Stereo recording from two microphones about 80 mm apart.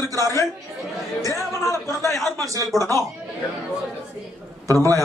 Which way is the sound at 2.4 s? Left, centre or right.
Right.